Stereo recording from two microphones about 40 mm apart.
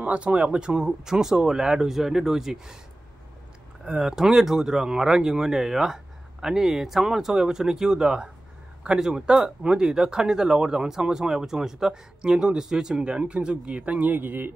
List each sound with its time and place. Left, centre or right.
0.0 s speech: right; by 2.8 s centre
3.8 s speech: centre
8.8 s speech: right
12.9 s speech: right